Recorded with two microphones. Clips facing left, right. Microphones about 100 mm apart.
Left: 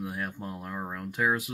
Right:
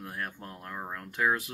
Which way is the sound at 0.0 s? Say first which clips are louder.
Left 4 dB; 10° left (ahead or behind).